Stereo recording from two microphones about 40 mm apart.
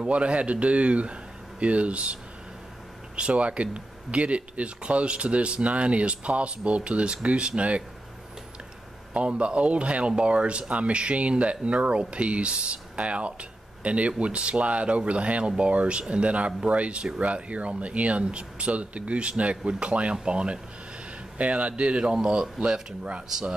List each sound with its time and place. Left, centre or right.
0.0 s speech: right
3.2 s speech: right
9.1 s a man's voice: right
23.2 s speech: centre